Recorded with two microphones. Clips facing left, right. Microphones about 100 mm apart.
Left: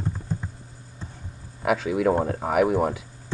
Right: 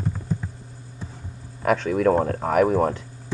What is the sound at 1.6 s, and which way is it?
Speech, 5° left (ahead or behind).